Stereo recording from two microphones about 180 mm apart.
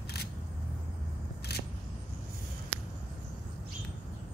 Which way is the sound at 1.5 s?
65° left (ahead or behind).